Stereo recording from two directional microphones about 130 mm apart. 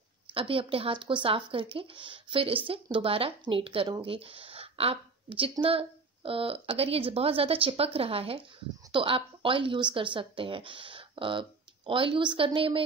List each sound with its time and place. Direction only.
0.3 s a woman's voice: 45° right (ahead or behind)